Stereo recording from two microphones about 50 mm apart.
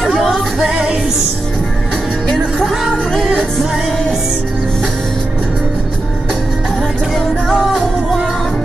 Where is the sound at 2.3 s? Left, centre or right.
Centre.